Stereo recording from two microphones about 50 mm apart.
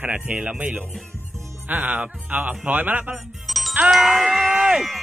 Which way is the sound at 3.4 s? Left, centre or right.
Centre.